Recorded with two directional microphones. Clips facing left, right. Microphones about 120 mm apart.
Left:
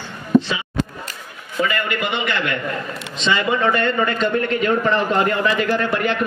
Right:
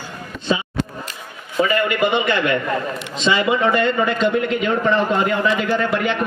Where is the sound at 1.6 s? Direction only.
25° right (ahead or behind).